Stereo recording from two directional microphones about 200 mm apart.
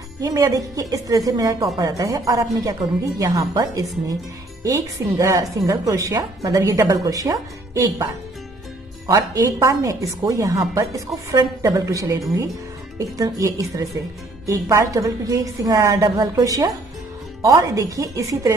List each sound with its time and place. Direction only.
0.2 s a woman's voice: 15° right (ahead or behind)
13.2 s a woman's voice: 15° right (ahead or behind)